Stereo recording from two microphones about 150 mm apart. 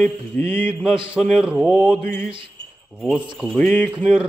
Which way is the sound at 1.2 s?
5° right (ahead or behind).